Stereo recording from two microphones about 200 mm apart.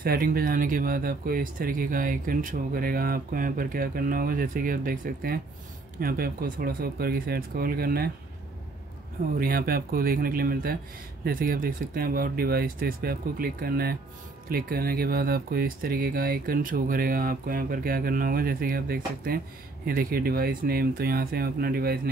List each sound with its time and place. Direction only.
0.0 s speech: 45° right (ahead or behind)
9.4 s speech: 45° right (ahead or behind)